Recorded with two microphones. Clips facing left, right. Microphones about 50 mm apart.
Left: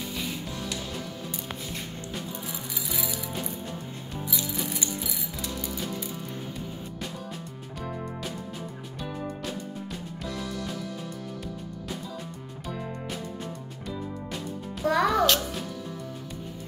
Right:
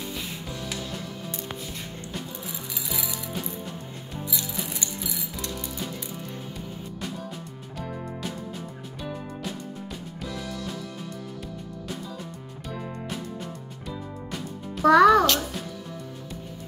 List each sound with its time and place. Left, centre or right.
14.8 s music: right